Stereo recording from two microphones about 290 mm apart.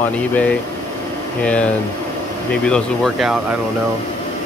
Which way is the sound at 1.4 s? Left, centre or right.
Centre.